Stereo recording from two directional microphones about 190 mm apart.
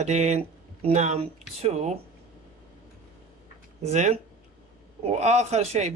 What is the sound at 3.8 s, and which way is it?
A man's voice, 35° right (ahead or behind).